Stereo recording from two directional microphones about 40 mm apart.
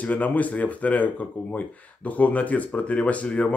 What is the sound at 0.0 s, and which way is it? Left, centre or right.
Speech, left.